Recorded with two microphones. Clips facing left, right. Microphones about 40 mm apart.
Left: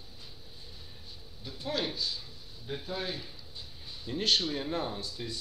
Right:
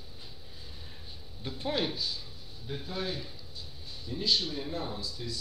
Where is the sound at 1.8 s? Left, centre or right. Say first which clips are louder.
Right 1 dB; centre.